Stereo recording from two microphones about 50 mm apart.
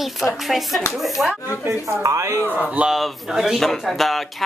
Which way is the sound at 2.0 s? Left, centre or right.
Right.